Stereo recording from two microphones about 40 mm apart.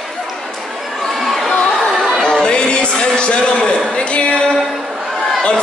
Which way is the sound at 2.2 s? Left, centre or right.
Centre.